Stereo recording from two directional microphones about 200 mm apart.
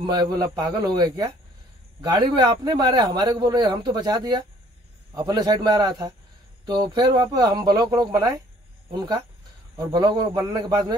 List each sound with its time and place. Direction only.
0.0 s speech: 20° right (ahead or behind)